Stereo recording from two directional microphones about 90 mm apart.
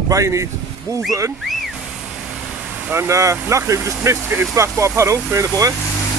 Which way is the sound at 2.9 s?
30° right (ahead or behind).